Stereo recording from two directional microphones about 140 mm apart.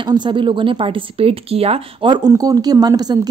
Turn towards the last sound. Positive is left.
turn(degrees=-30)  # may be behind; listen again after turning